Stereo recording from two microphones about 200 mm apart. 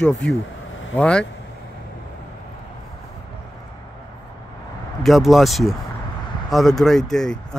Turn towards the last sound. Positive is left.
turn(degrees=0)  # may be behind; listen again after turning